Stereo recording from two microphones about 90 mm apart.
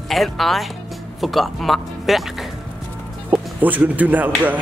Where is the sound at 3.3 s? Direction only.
20° right (ahead or behind).